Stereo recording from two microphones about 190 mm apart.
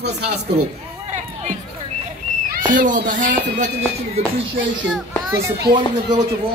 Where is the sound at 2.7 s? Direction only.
45° right (ahead or behind).